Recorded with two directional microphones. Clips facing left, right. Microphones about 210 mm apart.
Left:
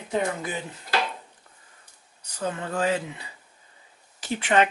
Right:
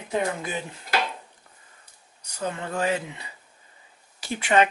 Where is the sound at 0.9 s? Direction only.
5° right (ahead or behind).